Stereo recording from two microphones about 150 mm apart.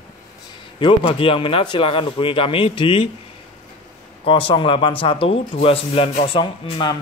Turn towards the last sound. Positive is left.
turn(degrees=35)  # may be behind; listen again after turning